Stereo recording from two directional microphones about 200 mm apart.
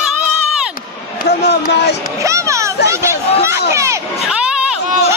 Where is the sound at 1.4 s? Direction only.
55° left (ahead or behind).